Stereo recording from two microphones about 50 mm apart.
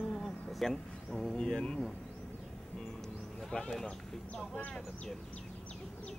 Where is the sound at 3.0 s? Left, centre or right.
Centre.